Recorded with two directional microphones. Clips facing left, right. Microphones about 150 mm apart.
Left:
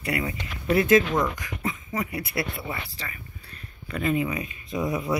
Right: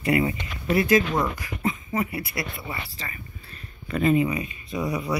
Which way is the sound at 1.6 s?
20° right (ahead or behind).